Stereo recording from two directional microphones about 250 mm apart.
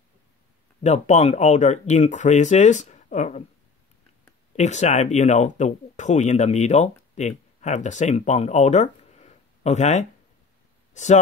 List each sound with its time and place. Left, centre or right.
0.8 s speech: left
4.6 s speech: left
10.9 s a sound: left